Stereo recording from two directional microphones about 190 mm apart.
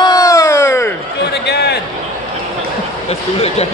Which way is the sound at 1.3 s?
60° left (ahead or behind).